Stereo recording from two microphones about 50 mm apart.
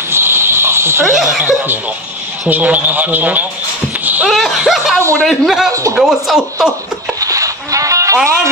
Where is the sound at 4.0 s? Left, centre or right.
Right.